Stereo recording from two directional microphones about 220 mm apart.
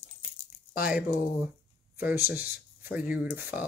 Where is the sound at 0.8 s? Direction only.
5° right (ahead or behind).